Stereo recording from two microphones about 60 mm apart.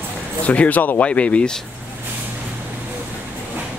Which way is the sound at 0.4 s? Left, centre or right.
Left.